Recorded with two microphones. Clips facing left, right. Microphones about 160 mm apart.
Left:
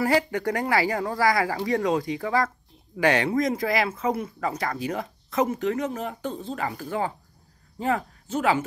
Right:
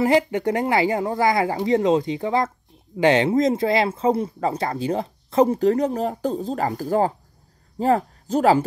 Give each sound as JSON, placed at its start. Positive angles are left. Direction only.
{"t": 0.0, "sound": "speech", "side_deg": -20}